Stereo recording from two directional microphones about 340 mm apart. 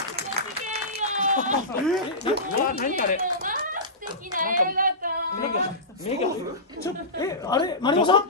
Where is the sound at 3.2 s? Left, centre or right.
Right.